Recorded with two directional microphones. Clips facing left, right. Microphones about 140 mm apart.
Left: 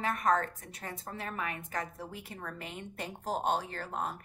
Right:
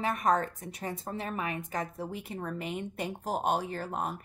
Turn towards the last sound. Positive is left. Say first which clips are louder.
# right 3 dB
turn(degrees=-15)  # may be behind; listen again after turning